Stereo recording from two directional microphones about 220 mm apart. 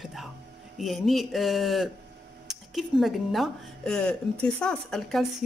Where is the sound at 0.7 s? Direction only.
Centre (ahead or behind).